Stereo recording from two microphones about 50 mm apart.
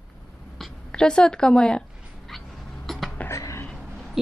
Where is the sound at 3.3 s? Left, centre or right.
Left.